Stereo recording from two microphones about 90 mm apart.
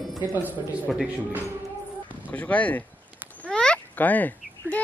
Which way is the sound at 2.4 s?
15° left (ahead or behind).